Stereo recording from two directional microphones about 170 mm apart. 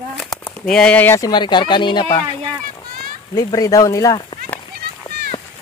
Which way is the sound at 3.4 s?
20° left (ahead or behind).